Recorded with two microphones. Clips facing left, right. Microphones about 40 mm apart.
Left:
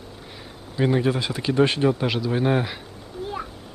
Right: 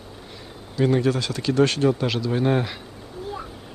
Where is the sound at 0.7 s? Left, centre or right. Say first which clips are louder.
Right 1 dB; centre.